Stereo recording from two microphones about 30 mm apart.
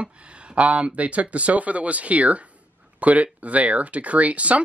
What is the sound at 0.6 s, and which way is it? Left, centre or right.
Speech, right.